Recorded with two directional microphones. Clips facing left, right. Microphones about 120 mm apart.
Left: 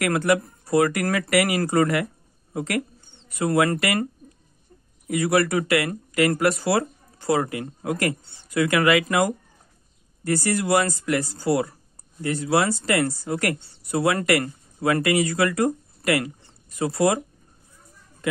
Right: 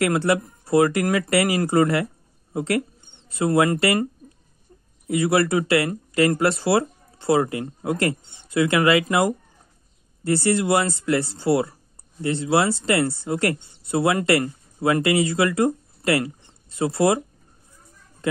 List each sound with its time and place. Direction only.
0.0 s speech: 25° right (ahead or behind)
5.0 s speech: 25° right (ahead or behind)